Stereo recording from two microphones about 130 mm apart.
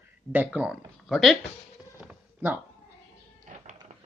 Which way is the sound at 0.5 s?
5° right (ahead or behind).